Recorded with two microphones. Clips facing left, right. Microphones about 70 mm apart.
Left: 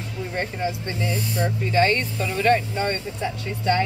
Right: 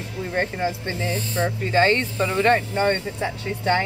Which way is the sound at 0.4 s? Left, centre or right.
Right.